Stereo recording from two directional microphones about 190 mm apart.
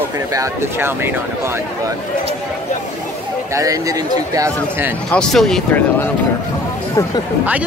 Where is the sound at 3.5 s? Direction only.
20° right (ahead or behind).